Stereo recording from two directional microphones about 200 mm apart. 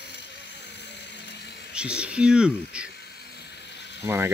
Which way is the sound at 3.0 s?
55° left (ahead or behind).